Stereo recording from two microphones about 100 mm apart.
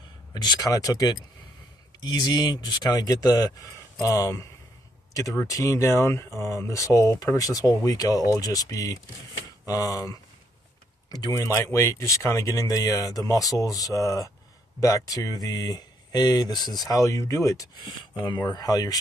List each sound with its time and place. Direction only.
0.3 s speech: 45° left (ahead or behind)
5.5 s speech: 30° left (ahead or behind)
11.5 s speech: 30° left (ahead or behind)